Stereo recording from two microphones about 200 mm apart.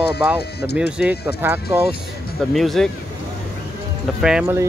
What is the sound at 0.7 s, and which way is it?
Speech, 5° right (ahead or behind).